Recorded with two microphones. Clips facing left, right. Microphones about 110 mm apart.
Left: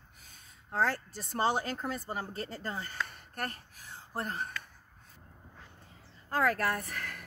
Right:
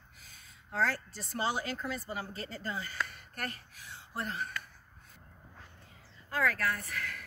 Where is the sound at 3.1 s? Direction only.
40° left (ahead or behind).